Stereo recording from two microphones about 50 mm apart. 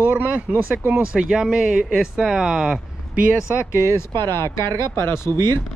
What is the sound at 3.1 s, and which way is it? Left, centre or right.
Speech, right.